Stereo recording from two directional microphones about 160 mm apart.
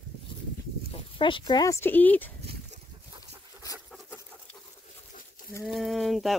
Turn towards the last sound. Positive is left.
turn(degrees=0)  # may be behind; listen again after turning